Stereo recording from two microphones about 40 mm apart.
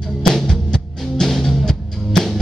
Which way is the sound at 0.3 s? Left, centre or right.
Centre.